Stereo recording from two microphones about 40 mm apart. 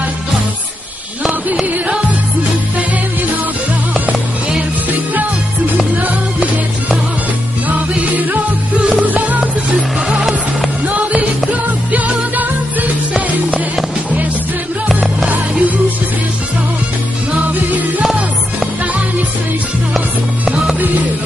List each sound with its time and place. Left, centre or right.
5.9 s music: right
7.6 s music: right
9.8 s music: right
10.1 s music: centre
10.9 s music: right
15.2 s music: right